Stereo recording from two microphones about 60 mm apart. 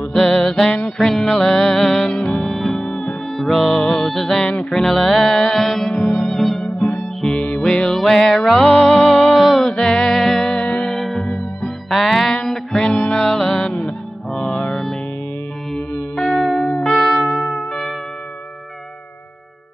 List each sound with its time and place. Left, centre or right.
0.1 s music: centre
2.8 s music: centre
3.3 s music: centre
7.3 s music: centre
9.8 s music: centre
11.2 s music: centre
11.9 s music: centre
16.2 s music: centre
16.6 s music: centre
16.9 s music: centre